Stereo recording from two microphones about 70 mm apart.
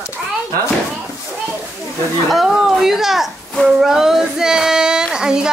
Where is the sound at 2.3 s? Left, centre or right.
Centre.